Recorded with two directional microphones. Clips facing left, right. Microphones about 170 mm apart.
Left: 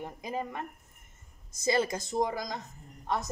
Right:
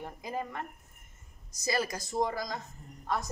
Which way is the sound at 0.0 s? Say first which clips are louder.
Left 1 dB; 15° left (ahead or behind).